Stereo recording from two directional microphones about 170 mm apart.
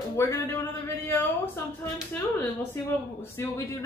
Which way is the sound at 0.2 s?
15° left (ahead or behind).